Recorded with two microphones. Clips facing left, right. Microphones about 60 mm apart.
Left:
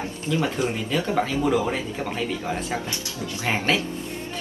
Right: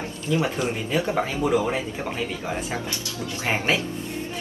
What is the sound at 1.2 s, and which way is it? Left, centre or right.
Speech, centre.